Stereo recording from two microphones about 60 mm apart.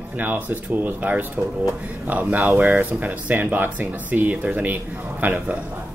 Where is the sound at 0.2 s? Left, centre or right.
Right.